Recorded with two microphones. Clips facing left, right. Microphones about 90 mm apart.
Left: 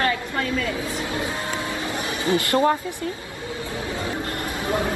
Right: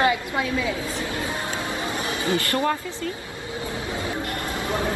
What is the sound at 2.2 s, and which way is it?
Speech, 20° left (ahead or behind).